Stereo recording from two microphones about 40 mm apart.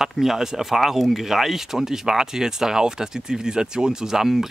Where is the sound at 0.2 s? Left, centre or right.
Centre.